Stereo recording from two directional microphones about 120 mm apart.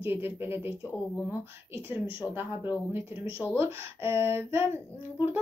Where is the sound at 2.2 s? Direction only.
20° right (ahead or behind).